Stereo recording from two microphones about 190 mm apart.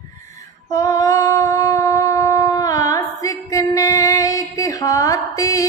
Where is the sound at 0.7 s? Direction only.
15° left (ahead or behind).